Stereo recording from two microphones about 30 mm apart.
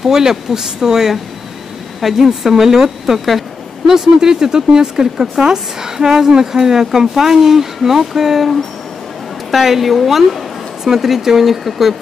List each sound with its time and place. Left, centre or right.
0.0 s a woman's voice: centre
2.0 s a woman's voice: centre
3.3 s a sound: centre
3.9 s a woman's voice: right